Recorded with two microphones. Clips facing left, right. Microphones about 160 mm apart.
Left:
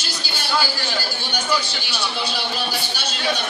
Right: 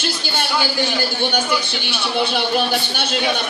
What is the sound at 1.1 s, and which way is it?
A man's voice, 55° right (ahead or behind).